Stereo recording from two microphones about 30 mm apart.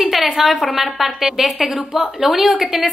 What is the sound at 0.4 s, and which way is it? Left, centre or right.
A woman's voice, centre.